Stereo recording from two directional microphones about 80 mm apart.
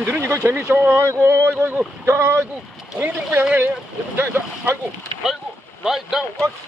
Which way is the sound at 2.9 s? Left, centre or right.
Right.